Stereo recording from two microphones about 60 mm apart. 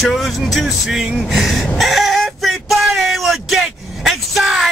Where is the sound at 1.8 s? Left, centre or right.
Centre.